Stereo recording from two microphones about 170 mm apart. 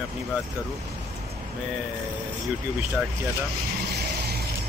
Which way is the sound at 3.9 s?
70° right (ahead or behind).